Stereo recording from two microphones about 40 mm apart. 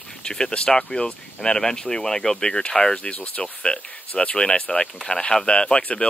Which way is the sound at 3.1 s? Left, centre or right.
Left.